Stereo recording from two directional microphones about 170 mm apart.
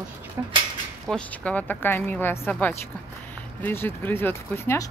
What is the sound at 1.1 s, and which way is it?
Speech, 5° left (ahead or behind).